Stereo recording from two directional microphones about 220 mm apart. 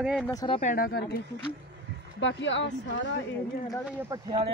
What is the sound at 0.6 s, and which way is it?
Speech, 40° left (ahead or behind).